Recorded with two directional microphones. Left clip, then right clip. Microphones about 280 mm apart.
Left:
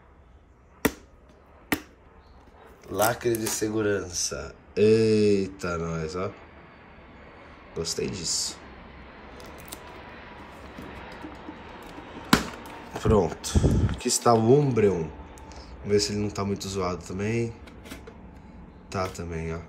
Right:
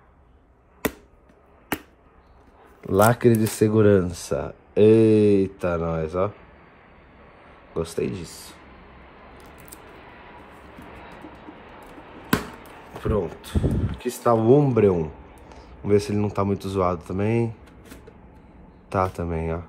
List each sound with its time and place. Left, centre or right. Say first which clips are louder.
2.9 s a man's voice: right 7 dB; right
7.7 s a man's voice: right 3 dB; centre
13.0 s a man's voice: left 3 dB; centre
18.9 s a man's voice: right 7 dB; centre